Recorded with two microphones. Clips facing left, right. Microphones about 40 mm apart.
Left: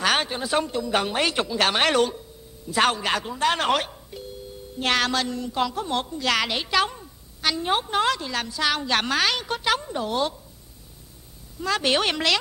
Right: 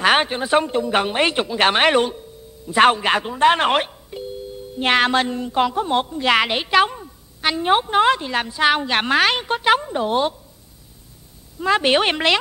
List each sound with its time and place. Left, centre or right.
0.0 s a woman's voice: right
4.1 s music: right
4.7 s a woman's voice: right
11.6 s a woman's voice: right